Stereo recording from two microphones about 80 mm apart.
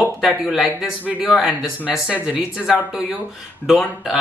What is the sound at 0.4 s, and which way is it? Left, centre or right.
Speech, centre.